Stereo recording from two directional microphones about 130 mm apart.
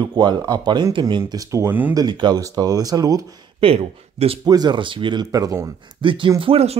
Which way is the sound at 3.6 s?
45° right (ahead or behind).